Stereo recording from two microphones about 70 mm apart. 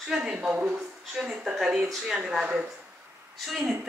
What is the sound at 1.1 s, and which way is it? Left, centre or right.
Speech, centre.